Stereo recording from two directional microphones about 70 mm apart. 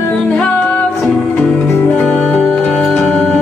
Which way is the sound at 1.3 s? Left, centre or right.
Left.